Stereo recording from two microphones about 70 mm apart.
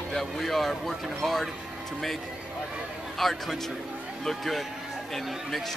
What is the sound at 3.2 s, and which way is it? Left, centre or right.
Speech, centre.